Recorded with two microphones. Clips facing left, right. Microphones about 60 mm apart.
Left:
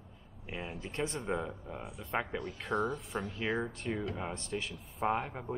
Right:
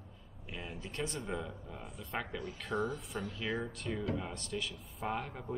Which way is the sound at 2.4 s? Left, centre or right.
Centre.